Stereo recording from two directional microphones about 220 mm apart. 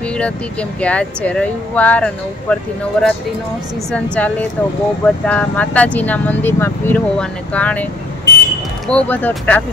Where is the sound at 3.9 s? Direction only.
5° left (ahead or behind).